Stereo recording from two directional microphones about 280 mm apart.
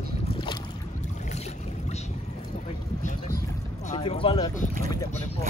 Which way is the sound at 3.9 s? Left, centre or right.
Centre.